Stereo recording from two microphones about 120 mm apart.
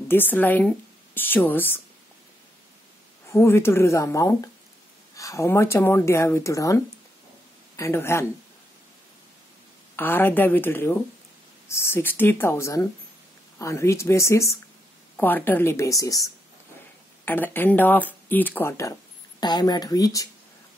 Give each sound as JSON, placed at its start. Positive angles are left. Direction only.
{"t": 0.1, "sound": "speech", "side_deg": 15}
{"t": 3.3, "sound": "speech", "side_deg": 20}
{"t": 9.9, "sound": "speech", "side_deg": 15}
{"t": 17.2, "sound": "speech", "side_deg": 15}
{"t": 19.4, "sound": "speech", "side_deg": 35}